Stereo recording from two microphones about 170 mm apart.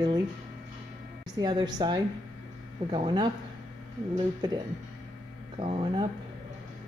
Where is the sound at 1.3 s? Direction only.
25° right (ahead or behind).